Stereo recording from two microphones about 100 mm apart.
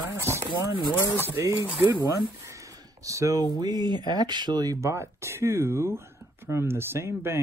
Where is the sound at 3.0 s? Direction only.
35° right (ahead or behind).